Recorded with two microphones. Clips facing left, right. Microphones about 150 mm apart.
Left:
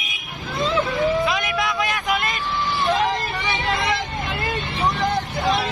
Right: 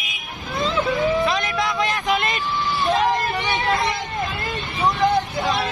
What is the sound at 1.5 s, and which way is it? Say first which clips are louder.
Vehicle: right 1 dB; centre (ahead or behind).